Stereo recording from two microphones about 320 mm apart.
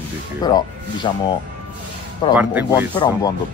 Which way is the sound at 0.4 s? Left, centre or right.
Centre.